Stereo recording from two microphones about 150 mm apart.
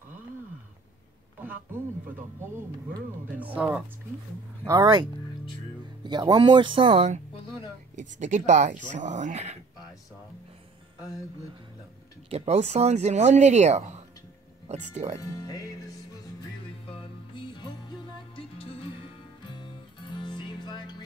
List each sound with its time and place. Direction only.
3.3 s speech: 10° right (ahead or behind)
4.6 s speech: 25° right (ahead or behind)
6.0 s speech: 30° right (ahead or behind)
8.0 s speech: 55° right (ahead or behind)
12.3 s speech: 45° right (ahead or behind)
15.1 s speech: 25° left (ahead or behind)
17.0 s music: 35° left (ahead or behind)